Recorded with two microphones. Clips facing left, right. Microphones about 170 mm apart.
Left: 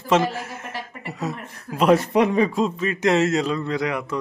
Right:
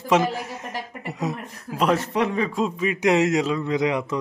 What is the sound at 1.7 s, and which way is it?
Speech, 5° left (ahead or behind).